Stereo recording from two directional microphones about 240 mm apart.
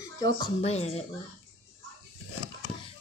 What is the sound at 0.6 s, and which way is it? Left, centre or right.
Speech, left.